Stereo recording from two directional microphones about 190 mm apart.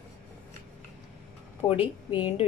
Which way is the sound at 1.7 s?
10° right (ahead or behind).